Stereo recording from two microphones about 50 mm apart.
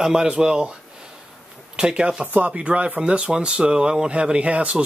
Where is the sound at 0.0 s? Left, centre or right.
Centre.